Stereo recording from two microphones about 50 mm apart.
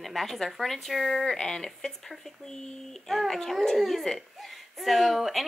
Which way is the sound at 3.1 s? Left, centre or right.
Centre.